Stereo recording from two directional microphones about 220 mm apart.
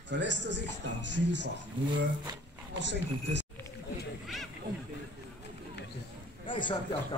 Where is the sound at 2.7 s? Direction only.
55° right (ahead or behind).